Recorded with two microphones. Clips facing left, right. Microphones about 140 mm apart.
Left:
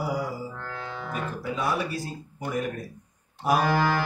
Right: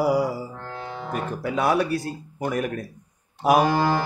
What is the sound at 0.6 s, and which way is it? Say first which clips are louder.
Music: right 2 dB; 25° right (ahead or behind).